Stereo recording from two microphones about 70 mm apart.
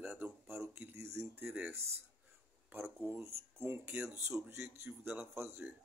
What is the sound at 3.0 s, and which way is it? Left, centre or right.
Speech, right.